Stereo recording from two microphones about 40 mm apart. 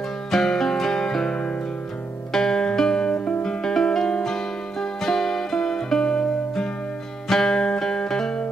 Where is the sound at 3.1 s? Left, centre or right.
Left.